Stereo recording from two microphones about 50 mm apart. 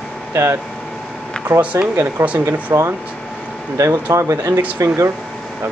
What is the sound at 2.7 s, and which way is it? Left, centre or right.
Speech, right.